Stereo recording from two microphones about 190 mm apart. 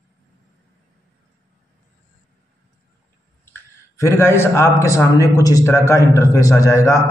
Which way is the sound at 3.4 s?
15° left (ahead or behind).